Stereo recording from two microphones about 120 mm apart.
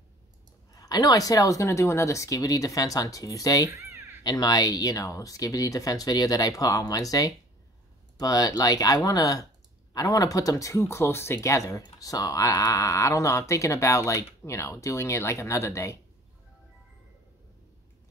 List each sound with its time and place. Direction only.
0.7 s speech: 30° left (ahead or behind)
3.6 s a sound: 25° right (ahead or behind)
4.2 s speech: 35° left (ahead or behind)